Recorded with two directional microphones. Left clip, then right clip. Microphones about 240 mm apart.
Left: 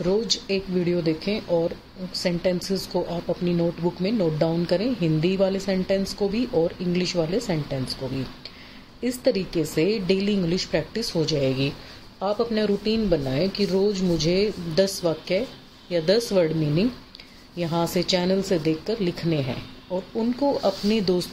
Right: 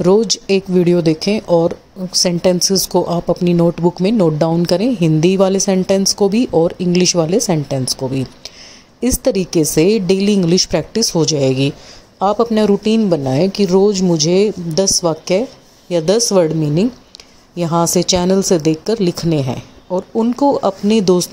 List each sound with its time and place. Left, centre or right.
0.0 s a woman's voice: right
9.0 s a woman's voice: right